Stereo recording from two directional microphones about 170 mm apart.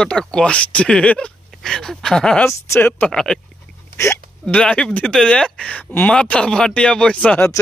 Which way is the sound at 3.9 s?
15° left (ahead or behind).